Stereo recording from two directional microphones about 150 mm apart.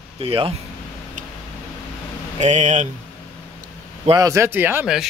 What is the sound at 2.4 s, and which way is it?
Speech, 55° right (ahead or behind).